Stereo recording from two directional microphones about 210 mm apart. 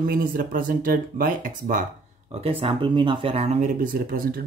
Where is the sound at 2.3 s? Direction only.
25° right (ahead or behind).